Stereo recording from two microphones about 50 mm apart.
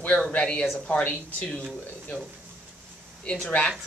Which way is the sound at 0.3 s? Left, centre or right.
Centre.